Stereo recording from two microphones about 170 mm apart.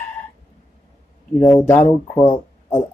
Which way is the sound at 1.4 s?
10° left (ahead or behind).